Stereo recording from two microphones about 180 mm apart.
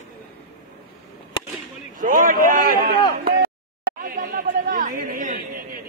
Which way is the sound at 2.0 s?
50° right (ahead or behind).